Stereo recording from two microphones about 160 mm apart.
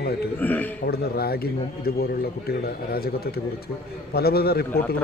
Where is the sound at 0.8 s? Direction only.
75° left (ahead or behind).